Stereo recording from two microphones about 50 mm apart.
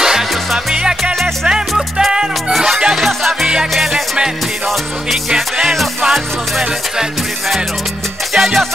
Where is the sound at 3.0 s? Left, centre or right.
Centre.